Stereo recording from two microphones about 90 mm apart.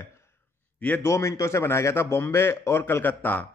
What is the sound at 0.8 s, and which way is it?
Speech, 20° left (ahead or behind).